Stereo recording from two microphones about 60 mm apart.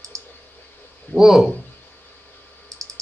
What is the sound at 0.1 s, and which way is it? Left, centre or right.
Clicking, right.